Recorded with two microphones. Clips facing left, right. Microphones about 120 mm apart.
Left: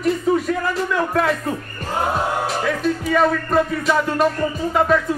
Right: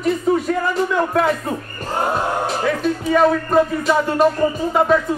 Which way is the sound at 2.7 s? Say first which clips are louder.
Right 2 dB; centre (ahead or behind).